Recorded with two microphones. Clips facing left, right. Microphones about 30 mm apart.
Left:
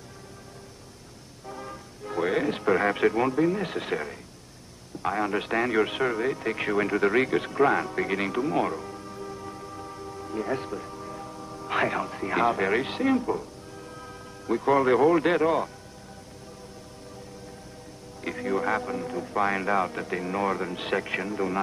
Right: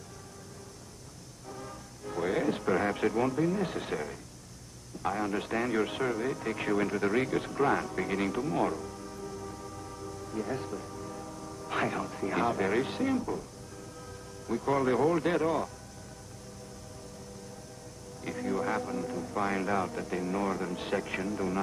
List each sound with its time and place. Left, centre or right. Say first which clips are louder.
1.5 s speech: left 4 dB; left
18.2 s speech: left 5 dB; left